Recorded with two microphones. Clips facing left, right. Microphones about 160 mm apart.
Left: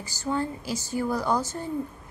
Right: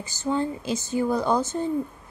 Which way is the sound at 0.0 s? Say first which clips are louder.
Right 3 dB; 20° right (ahead or behind).